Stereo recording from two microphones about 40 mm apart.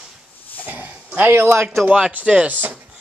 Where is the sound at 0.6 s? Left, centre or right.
Right.